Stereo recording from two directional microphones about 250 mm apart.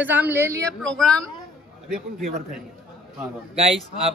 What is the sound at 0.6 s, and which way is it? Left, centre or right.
Speech, centre.